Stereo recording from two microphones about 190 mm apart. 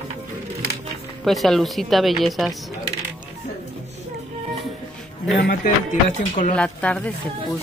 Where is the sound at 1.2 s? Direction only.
Centre (ahead or behind).